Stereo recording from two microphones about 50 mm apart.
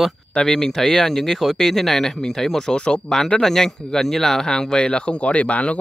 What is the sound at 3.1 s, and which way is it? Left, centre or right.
Speech, centre.